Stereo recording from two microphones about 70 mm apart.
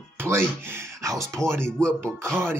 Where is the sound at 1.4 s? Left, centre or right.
Centre.